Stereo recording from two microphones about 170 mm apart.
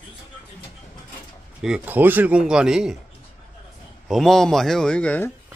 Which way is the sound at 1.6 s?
5° right (ahead or behind).